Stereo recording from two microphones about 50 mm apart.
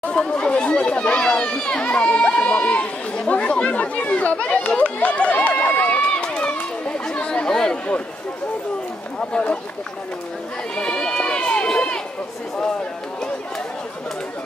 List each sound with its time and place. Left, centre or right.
0.0 s speech: centre
4.6 s run: left
7.1 s chatter: left
9.3 s speech: left
10.8 s speech: centre